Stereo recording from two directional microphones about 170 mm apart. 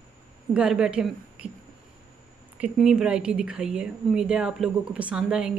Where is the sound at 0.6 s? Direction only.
5° right (ahead or behind).